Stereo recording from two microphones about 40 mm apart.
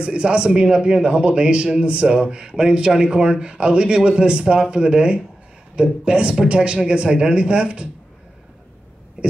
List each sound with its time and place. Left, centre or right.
0.0 s a man's voice: right